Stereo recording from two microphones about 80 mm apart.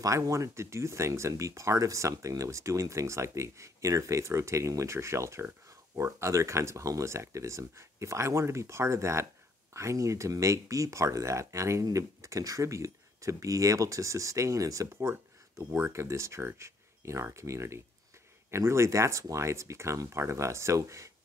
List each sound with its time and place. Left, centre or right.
0.0 s speech: right